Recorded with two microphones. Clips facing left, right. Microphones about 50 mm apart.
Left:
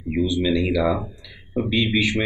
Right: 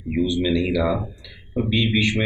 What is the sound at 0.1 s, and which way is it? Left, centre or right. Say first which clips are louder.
Speech: even; centre.